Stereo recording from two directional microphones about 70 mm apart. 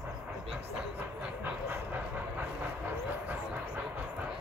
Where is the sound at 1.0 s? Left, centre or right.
Right.